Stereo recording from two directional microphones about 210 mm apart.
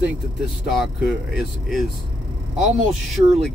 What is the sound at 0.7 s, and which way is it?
Speech, centre (ahead or behind).